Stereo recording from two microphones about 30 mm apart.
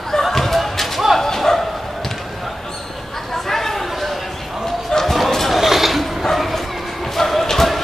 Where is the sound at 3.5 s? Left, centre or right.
Centre.